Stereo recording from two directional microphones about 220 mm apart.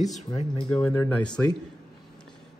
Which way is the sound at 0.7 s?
15° left (ahead or behind).